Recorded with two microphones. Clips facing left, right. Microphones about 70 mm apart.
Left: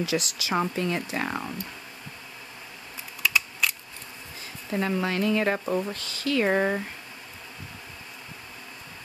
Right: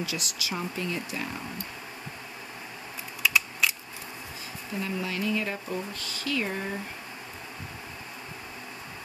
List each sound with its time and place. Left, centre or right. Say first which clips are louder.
0.0 s speech: left 6 dB; left
0.6 s speech: left 7 dB; left
3.2 s camera: even; centre
4.7 s speech: left 6 dB; left